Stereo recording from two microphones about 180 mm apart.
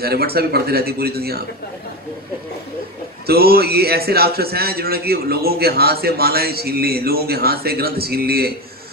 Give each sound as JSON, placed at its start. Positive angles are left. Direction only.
{"t": 0.0, "sound": "a man's voice", "side_deg": -60}
{"t": 3.3, "sound": "a man's voice", "side_deg": -60}